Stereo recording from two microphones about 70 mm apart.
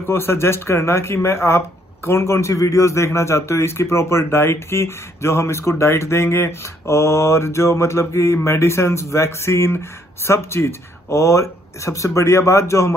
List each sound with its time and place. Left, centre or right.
0.0 s a man's voice: left